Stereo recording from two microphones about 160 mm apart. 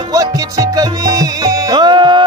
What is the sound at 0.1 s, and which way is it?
Music, 20° right (ahead or behind).